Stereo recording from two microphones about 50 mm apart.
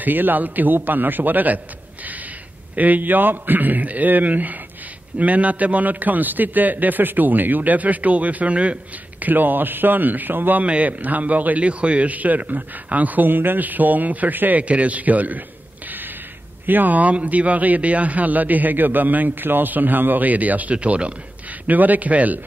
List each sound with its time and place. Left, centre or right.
0.0 s speech: right
2.7 s speech: right
9.2 s speech: right
10.6 s speech: right
16.6 s speech: right
21.6 s speech: right